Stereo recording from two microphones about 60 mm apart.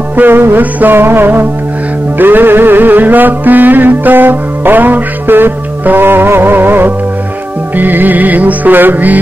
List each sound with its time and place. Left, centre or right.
0.1 s music: right